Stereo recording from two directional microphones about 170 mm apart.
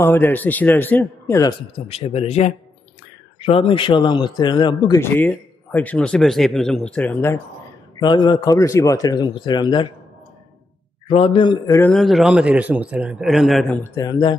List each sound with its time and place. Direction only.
0.0 s speech: 10° left (ahead or behind)
1.9 s speech: 35° left (ahead or behind); by 7.3 s 10° left (ahead or behind)
8.0 s speech: 25° left (ahead or behind)
11.1 s speech: 35° left (ahead or behind); by 11.9 s 20° left (ahead or behind)
11.9 s a man's voice: centre (ahead or behind)
13.9 s speech: 25° left (ahead or behind)